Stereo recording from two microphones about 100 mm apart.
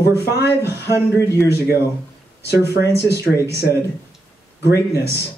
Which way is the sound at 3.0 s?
30° left (ahead or behind).